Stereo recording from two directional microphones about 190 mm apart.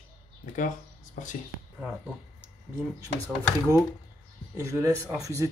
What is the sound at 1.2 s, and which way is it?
Speech, 40° left (ahead or behind).